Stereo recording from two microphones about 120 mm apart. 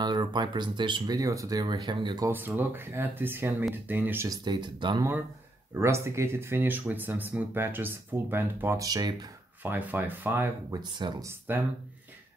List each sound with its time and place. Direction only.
0.0 s speech: 35° right (ahead or behind)
2.2 s speech: 15° right (ahead or behind)
4.3 s speech: 35° right (ahead or behind)
5.8 s speech: 20° right (ahead or behind)
9.6 s speech: 15° right (ahead or behind)
10.7 s speech: 40° right (ahead or behind)
11.2 s speech: 15° right (ahead or behind)